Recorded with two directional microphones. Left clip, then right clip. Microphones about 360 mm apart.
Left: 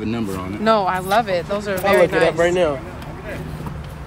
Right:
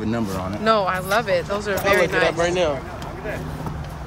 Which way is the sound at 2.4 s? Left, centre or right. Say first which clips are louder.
Left 3 dB; centre.